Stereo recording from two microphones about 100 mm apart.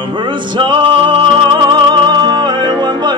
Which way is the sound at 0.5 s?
55° right (ahead or behind).